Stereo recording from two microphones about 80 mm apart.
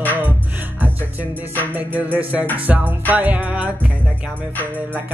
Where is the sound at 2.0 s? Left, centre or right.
Centre.